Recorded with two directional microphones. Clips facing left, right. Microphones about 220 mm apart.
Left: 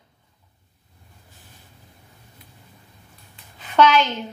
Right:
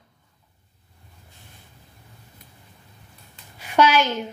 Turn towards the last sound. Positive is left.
turn(degrees=-10)  # may be behind; listen again after turning